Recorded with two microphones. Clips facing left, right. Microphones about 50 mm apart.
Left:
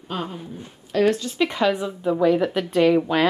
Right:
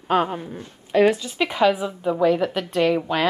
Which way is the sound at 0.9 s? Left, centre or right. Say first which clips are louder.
Right 2 dB; centre.